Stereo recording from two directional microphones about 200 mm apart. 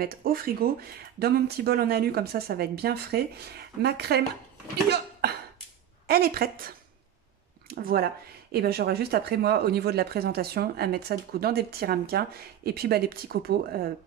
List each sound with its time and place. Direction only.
0.0 s speech: 45° right (ahead or behind)
4.8 s cough: 55° right (ahead or behind)
6.0 s speech: 50° right (ahead or behind)